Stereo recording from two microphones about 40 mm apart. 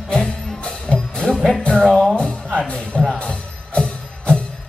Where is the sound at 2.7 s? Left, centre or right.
Left.